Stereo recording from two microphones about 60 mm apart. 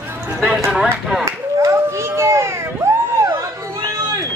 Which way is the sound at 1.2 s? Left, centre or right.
Right.